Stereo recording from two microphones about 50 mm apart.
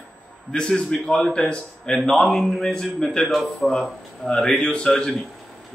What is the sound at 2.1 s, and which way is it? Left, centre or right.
A man's voice, centre.